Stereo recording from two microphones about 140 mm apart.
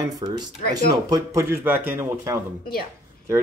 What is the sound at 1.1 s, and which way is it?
Speech, 20° right (ahead or behind).